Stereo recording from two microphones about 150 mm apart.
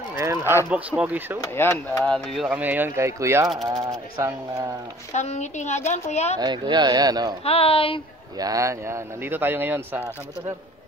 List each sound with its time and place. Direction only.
0.2 s speech: 20° right (ahead or behind)
1.4 s speech: 15° left (ahead or behind)
2.0 s speech: centre (ahead or behind); by 4.7 s 20° right (ahead or behind)
5.1 s a woman's voice: 50° left (ahead or behind)
6.4 s speech: 30° right (ahead or behind)
7.4 s speech: 40° left (ahead or behind)
8.4 s speech: 25° right (ahead or behind)